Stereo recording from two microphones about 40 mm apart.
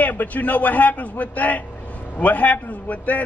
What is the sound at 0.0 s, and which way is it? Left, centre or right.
A man's voice, left.